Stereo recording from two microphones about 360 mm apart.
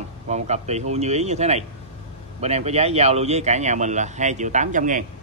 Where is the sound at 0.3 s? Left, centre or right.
Centre.